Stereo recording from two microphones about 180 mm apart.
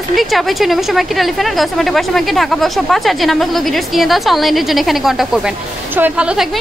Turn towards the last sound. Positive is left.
turn(degrees=-5)  # may be behind; listen again after turning